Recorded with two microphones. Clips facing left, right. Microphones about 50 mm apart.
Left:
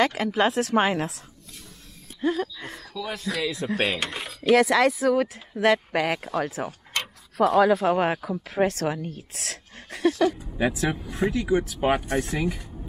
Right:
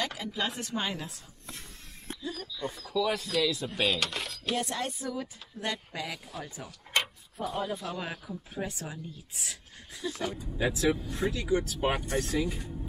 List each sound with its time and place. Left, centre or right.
0.0 s a woman's voice: left
2.2 s speech: left
3.1 s speech: centre
3.7 s speech: left
4.0 s speech: centre
4.4 s speech: left
7.3 s speech: left
7.8 s a woman's voice: left
10.6 s speech: left